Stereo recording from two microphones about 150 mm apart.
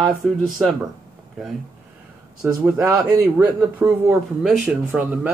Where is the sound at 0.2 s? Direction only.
5° left (ahead or behind).